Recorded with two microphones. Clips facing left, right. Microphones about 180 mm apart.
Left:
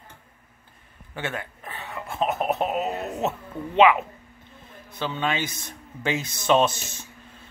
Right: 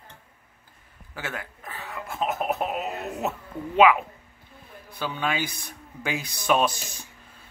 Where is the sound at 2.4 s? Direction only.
25° left (ahead or behind).